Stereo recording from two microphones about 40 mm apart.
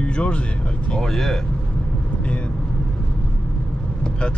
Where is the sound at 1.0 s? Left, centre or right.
Centre.